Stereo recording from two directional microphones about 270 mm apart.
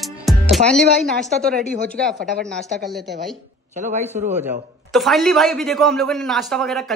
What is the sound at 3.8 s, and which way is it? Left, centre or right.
Speech, right.